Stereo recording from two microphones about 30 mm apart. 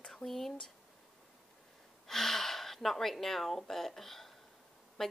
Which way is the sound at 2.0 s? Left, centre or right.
Centre.